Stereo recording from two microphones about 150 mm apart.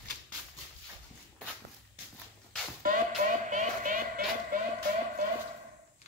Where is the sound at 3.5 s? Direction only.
60° right (ahead or behind).